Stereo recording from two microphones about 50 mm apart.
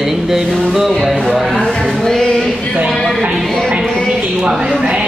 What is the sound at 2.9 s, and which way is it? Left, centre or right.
Music, centre.